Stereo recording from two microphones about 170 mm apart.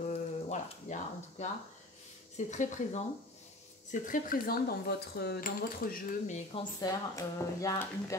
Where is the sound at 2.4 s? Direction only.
45° left (ahead or behind).